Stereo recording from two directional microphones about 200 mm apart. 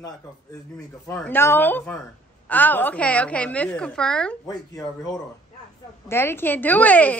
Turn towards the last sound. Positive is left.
turn(degrees=10)  # may be behind; listen again after turning